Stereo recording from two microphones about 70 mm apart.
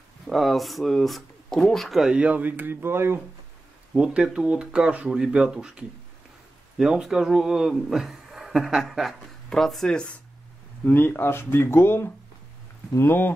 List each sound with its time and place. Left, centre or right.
0.3 s speech: centre
2.0 s speech: centre; by 3.2 s right
3.9 s speech: centre
10.9 s speech: left